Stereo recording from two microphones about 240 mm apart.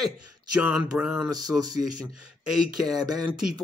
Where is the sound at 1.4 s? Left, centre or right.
Left.